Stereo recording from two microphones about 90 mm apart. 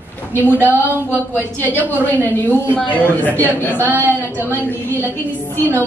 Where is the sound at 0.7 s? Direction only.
20° right (ahead or behind).